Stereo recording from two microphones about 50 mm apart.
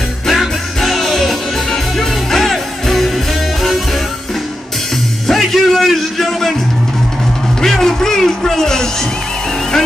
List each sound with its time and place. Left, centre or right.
0.3 s music: centre
5.2 s music: centre
7.6 s music: centre